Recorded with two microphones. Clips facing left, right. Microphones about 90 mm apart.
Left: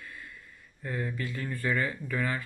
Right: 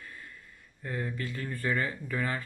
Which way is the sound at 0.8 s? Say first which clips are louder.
Left 1 dB; 40° right (ahead or behind).